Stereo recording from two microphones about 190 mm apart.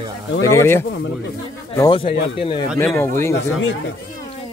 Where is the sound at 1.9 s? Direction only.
30° left (ahead or behind).